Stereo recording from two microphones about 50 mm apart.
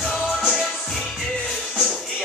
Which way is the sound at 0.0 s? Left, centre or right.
Left.